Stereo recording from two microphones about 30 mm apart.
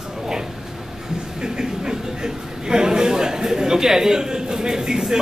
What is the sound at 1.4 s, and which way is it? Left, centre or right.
A man's voice, right.